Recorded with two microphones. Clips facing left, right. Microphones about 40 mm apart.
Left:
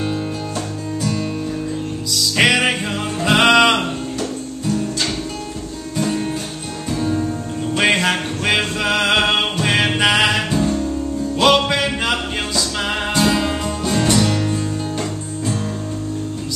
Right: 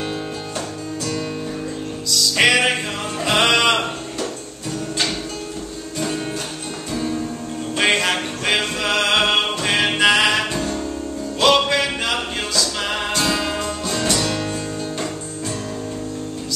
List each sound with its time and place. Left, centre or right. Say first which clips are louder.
2.1 s music: even; centre
6.9 s music: left 4 dB; centre
14.4 s music: left 3 dB; centre